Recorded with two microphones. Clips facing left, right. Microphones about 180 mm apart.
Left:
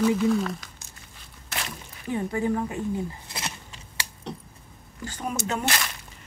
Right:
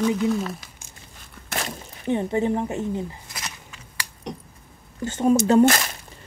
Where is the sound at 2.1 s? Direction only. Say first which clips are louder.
Right 4 dB; 25° right (ahead or behind).